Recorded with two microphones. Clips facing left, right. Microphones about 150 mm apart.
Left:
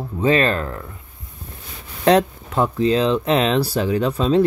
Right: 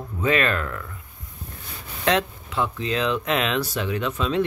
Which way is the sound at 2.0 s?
40° left (ahead or behind).